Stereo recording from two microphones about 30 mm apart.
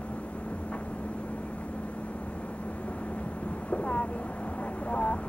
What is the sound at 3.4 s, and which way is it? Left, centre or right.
Vehicle, left.